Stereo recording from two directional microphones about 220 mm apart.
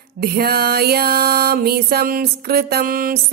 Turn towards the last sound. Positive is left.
turn(degrees=-40)  # may be behind; listen again after turning